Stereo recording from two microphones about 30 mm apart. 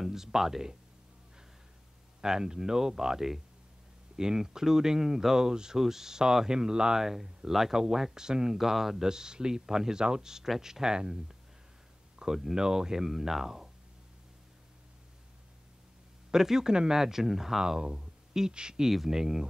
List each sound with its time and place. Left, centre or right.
0.0 s speech: centre
2.2 s speech: right
7.0 s speech: centre
8.6 s speech: centre
16.3 s speech: centre
18.8 s speech: centre